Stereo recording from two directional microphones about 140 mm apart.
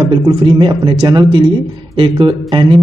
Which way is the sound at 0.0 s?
40° right (ahead or behind).